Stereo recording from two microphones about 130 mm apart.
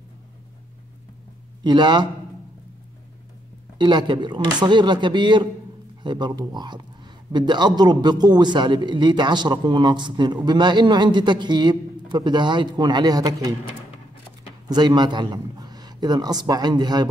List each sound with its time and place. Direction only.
1.6 s a man's voice: 35° right (ahead or behind)
3.7 s a man's voice: 35° right (ahead or behind)
14.7 s a man's voice: 35° right (ahead or behind)